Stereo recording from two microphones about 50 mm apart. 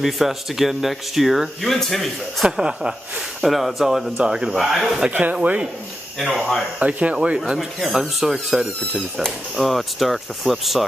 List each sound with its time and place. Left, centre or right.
0.0 s speech: centre
2.4 s speech: centre
4.2 s speech: centre
5.3 s speech: right
6.8 s speech: right
7.2 s speech: centre